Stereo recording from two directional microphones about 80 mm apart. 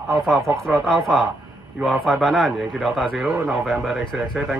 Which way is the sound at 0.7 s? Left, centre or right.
Centre.